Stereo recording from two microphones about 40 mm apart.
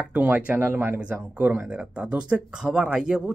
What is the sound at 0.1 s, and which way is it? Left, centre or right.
Speech, right.